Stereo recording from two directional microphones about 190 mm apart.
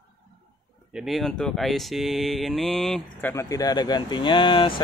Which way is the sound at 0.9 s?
Centre (ahead or behind).